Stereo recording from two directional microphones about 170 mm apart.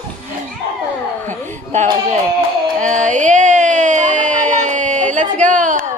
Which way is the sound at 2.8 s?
45° right (ahead or behind).